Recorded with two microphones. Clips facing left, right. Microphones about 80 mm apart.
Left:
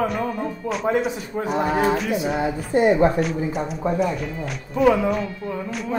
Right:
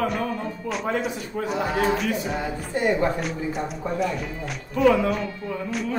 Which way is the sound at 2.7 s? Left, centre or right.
Left.